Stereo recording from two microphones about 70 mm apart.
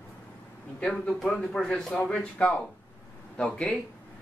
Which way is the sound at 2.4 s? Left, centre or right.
Centre.